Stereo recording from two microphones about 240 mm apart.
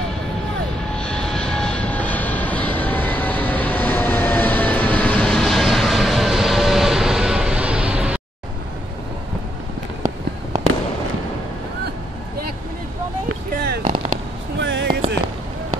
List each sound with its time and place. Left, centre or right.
0.9 s vehicle: centre
14.6 s music: right